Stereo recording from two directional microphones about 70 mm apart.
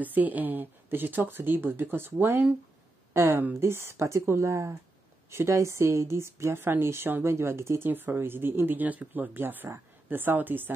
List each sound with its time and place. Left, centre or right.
0.0 s speech: right